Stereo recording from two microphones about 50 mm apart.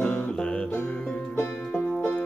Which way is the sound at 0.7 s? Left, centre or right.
Left.